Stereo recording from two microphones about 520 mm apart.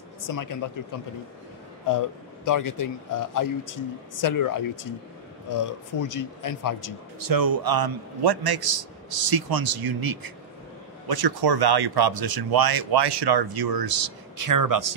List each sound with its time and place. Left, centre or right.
1.9 s speech: left
7.2 s speech: right